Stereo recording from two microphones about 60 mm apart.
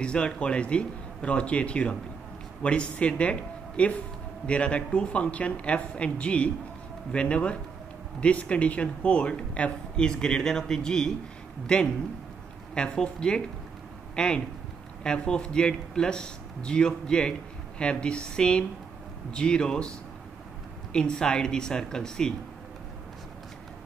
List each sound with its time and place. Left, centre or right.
0.0 s speech: centre
20.9 s speech: centre